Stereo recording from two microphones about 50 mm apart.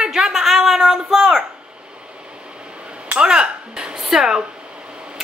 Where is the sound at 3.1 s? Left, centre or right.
Centre.